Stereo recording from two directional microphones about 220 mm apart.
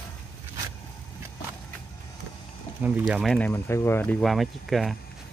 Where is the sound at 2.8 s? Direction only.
5° right (ahead or behind).